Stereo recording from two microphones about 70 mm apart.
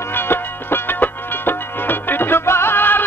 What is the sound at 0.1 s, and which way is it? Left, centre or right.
Music, left.